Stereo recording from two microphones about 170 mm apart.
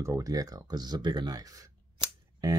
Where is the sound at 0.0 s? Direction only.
20° right (ahead or behind).